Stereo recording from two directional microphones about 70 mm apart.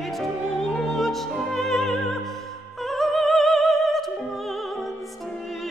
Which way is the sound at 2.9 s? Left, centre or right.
Centre.